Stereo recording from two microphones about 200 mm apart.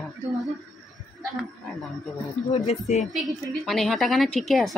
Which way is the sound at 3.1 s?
Centre (ahead or behind).